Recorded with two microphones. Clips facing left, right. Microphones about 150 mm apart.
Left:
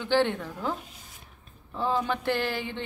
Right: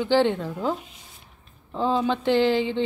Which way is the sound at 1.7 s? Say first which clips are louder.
Right 5 dB; 20° right (ahead or behind).